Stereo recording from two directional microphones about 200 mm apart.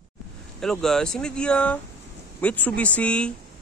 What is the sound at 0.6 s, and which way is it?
Speech, centre (ahead or behind).